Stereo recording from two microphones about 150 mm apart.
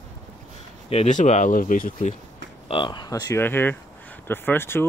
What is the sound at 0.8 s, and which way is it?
Speech, 45° left (ahead or behind).